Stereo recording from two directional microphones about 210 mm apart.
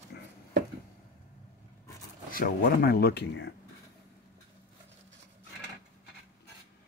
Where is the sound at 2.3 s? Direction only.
45° left (ahead or behind).